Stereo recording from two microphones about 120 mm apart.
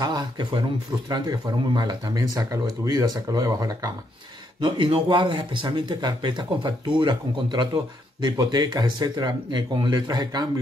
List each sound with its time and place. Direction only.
0.0 s a man's voice: 35° right (ahead or behind)
4.6 s a man's voice: 40° right (ahead or behind)